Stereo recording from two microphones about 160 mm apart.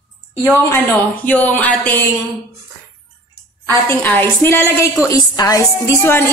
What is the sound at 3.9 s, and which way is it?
A woman's voice, 15° left (ahead or behind).